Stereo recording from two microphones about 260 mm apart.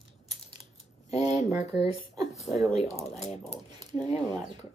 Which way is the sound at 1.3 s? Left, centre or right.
Left.